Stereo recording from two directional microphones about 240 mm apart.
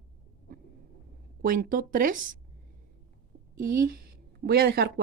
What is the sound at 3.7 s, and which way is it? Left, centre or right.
Speech, right.